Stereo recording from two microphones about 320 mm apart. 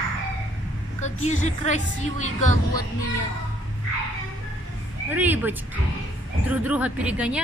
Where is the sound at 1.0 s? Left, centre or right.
Left.